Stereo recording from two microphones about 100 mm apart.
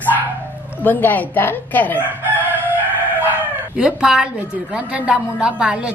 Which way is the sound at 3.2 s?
15° right (ahead or behind).